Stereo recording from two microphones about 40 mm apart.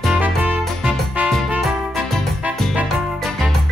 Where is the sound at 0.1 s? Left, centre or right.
Right.